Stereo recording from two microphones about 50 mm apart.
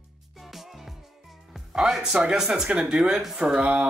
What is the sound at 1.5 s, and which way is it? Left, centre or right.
Speech, centre.